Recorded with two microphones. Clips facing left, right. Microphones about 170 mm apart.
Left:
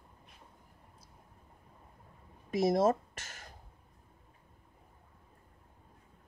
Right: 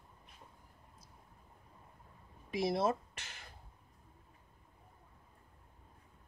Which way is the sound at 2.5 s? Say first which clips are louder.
Left 6 dB; 45° left (ahead or behind).